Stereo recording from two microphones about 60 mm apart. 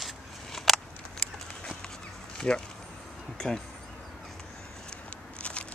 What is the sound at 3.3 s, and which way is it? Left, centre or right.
Speech, centre.